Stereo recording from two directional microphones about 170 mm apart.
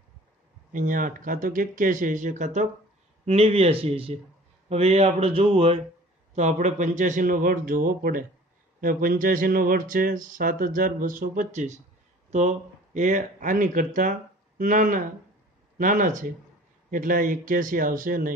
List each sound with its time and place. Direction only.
0.7 s speech: 50° right (ahead or behind)